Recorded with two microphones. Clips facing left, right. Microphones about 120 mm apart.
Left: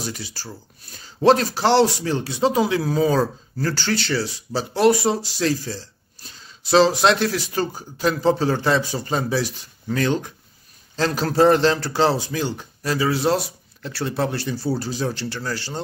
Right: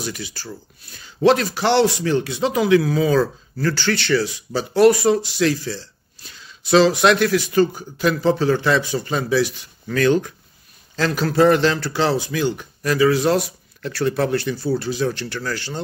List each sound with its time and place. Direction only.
0.0 s speech: 35° left (ahead or behind)